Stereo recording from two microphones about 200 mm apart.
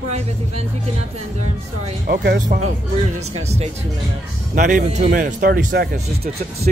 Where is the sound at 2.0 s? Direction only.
50° right (ahead or behind).